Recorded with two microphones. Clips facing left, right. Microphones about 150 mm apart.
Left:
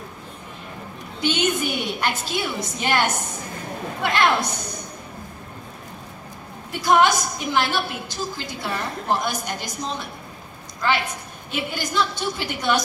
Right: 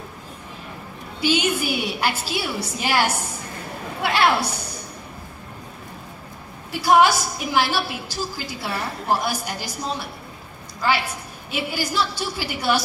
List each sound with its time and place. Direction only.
1.2 s a woman's voice: 5° right (ahead or behind)
6.7 s a woman's voice: 5° right (ahead or behind)
11.5 s a woman's voice: 5° right (ahead or behind)